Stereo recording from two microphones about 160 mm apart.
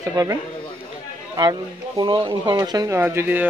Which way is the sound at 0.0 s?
20° right (ahead or behind).